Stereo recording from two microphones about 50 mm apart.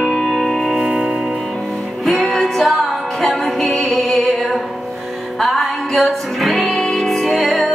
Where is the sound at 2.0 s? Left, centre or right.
Centre.